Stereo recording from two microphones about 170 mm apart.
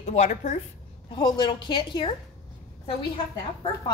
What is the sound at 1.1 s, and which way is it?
A woman's voice, 25° left (ahead or behind).